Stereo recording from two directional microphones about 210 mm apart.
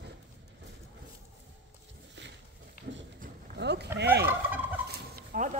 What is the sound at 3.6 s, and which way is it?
Sheep, 55° right (ahead or behind).